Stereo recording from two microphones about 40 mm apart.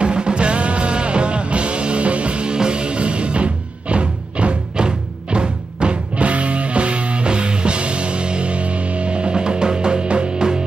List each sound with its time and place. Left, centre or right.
0.0 s music: right